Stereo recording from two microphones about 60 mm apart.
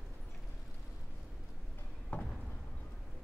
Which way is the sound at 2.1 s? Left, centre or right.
Left.